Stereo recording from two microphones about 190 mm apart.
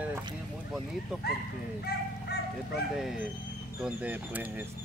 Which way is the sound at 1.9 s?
55° left (ahead or behind).